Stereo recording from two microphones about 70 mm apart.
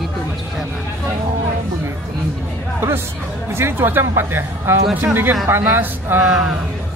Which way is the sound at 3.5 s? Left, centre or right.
Right.